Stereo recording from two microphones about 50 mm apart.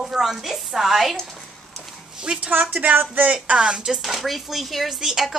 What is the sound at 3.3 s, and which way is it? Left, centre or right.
A woman's voice, centre.